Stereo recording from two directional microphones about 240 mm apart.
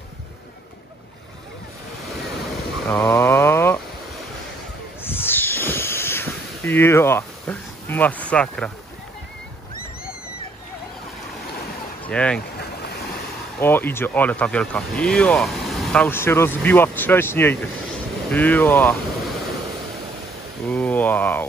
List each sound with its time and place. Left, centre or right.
2.5 s vehicle: centre
5.0 s snake: centre
12.0 s speech: centre
13.6 s speech: centre
20.7 s speech: centre